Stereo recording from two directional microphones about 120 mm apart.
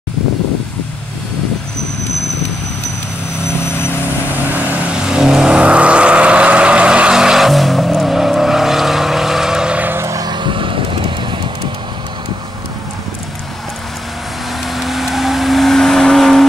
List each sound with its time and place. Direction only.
4.3 s vehicle: 15° right (ahead or behind)
10.3 s vehicle: 45° right (ahead or behind)
14.6 s vehicle: centre (ahead or behind)